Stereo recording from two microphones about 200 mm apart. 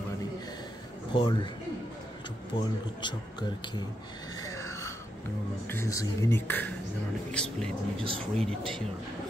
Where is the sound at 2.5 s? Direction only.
25° left (ahead or behind).